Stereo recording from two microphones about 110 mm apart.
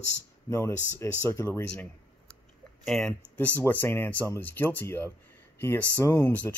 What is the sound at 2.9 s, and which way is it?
Speech, 10° left (ahead or behind).